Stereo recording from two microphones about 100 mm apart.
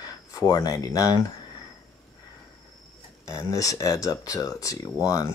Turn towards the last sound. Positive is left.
turn(degrees=30)  # may be behind; listen again after turning